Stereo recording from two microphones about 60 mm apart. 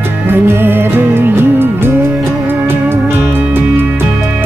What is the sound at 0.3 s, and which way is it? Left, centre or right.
Music, right.